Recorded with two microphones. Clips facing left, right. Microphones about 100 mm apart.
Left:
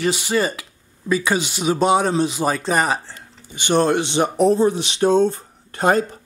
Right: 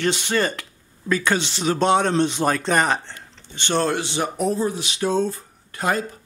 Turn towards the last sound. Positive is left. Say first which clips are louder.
# left 6 dB
turn(degrees=30)  # may be behind; listen again after turning